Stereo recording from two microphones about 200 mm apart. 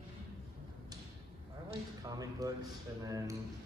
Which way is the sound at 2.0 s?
20° right (ahead or behind).